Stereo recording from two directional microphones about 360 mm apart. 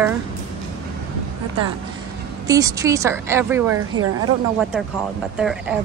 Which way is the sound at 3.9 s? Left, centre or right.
Right.